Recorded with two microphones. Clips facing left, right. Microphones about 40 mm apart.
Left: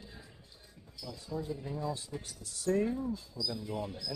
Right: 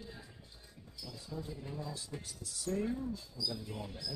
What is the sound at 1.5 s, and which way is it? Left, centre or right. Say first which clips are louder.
Speech: left 6 dB; centre.